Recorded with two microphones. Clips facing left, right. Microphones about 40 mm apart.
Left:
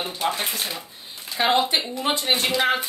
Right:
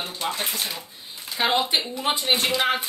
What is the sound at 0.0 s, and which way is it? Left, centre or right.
Speech, centre.